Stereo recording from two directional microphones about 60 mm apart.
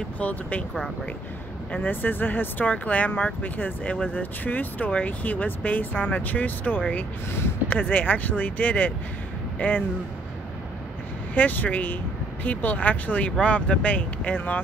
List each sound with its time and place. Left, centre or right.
0.2 s speech: left
1.7 s speech: left
11.3 s speech: left